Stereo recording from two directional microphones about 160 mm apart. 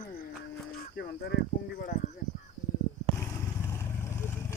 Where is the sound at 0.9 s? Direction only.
85° left.